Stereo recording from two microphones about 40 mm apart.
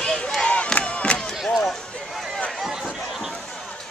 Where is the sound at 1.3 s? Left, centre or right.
Centre.